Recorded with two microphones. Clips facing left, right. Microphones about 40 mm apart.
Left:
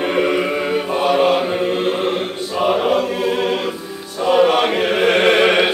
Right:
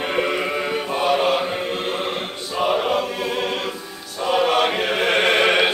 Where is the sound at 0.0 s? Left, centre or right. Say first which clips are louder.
Left 5 dB; centre.